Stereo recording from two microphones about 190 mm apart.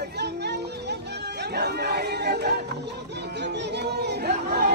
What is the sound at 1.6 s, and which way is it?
Speech, 60° right (ahead or behind).